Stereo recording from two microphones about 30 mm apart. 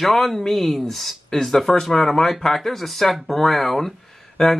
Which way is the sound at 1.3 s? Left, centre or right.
Centre.